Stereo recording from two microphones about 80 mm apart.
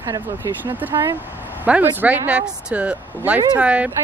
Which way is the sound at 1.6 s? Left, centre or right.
Centre.